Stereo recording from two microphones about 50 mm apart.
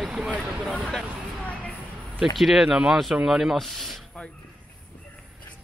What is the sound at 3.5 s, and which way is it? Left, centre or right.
Speech, centre.